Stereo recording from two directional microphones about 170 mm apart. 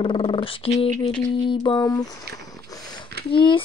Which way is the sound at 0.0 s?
30° left (ahead or behind).